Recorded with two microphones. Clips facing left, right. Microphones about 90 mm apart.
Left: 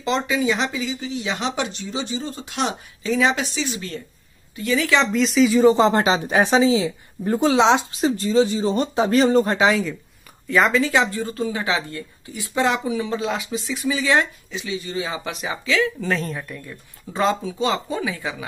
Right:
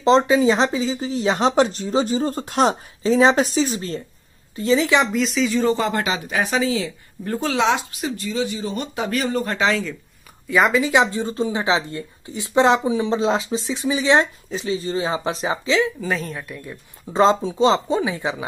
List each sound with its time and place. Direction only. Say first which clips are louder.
0.0 s speech: right 7 dB; 35° right (ahead or behind)
4.6 s a woman's voice: right 2 dB; 25° right (ahead or behind)
5.1 s a woman's voice: left 3 dB; centre (ahead or behind)
5.7 s speech: left 5 dB; 25° left (ahead or behind)
10.5 s a woman's voice: right 1 dB; 10° right (ahead or behind)
14.5 s speech: right 4 dB; 35° right (ahead or behind)
16.0 s a woman's voice: left 1 dB; 5° right (ahead or behind)
16.6 s a woman's voice: right 2 dB; 25° right (ahead or behind)